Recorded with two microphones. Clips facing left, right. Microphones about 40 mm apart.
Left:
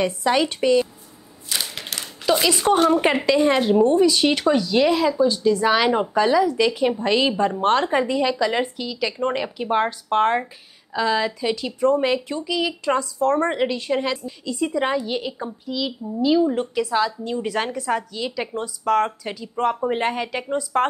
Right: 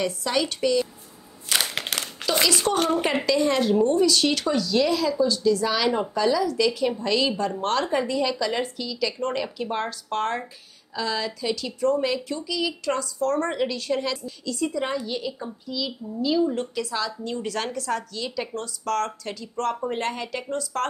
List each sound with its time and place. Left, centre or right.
0.0 s speech: left
1.9 s a sound: centre
2.4 s speech: left